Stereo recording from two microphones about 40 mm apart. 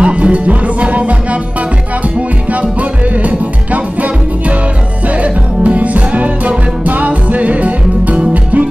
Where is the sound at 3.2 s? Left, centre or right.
Right.